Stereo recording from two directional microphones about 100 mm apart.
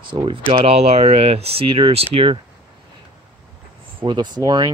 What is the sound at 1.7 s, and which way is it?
Speech, 70° right (ahead or behind).